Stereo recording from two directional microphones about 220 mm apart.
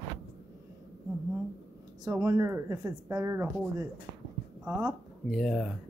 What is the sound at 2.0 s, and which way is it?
Speech, 15° right (ahead or behind).